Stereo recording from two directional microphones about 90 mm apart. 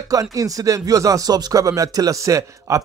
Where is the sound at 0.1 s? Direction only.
40° right (ahead or behind).